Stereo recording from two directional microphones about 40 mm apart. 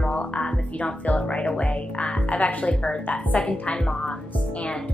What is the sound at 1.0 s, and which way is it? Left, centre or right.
A woman's voice, left.